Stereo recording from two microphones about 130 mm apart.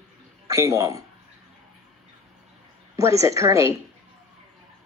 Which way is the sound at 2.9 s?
25° right (ahead or behind).